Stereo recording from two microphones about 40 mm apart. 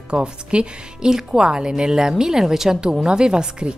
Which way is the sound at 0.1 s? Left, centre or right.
Right.